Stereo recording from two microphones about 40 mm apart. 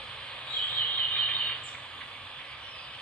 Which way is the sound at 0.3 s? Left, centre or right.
Left.